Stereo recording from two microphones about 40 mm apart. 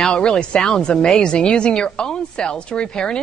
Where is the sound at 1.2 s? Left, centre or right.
Left.